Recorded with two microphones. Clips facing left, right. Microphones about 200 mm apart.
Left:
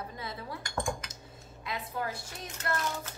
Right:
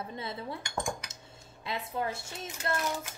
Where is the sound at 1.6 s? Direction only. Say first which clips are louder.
Right 2 dB; 25° right (ahead or behind).